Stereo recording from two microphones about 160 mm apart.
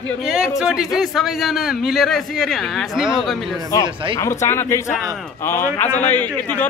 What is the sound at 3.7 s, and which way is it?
A man's voice, 20° left (ahead or behind).